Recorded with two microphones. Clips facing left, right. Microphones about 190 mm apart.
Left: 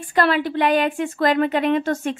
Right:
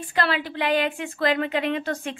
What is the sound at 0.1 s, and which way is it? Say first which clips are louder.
A woman's voice: left 7 dB; 45° left (ahead or behind).